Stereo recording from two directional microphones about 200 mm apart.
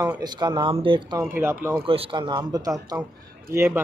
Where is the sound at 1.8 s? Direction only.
25° right (ahead or behind).